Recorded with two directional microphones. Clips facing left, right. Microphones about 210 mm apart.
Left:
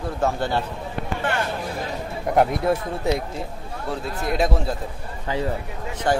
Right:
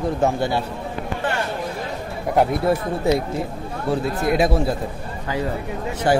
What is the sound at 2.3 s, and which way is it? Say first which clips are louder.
Speech: right 1 dB; 5° right (ahead or behind).